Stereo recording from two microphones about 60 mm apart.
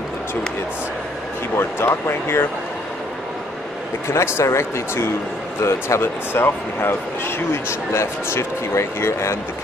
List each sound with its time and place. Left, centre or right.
1.5 s speech: left
4.1 s speech: left